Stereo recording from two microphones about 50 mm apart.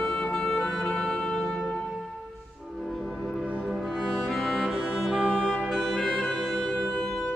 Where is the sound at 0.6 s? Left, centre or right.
Centre.